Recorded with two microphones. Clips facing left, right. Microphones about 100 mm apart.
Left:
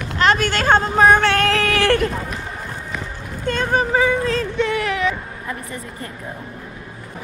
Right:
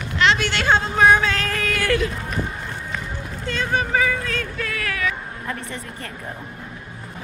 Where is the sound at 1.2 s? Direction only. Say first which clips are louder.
Left 6 dB; 65° left (ahead or behind).